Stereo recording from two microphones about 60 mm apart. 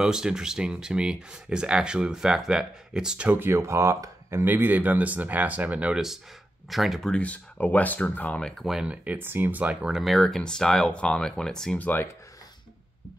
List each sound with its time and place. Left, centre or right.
0.0 s speech: centre
3.3 s speech: right
4.5 s speech: right
6.7 s speech: centre
7.2 s speech: left
8.4 s speech: centre
8.8 s speech: right
9.8 s speech: centre
10.1 s speech: centre
11.8 s speech: left